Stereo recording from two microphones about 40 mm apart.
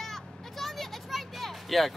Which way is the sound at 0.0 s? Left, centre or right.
Centre.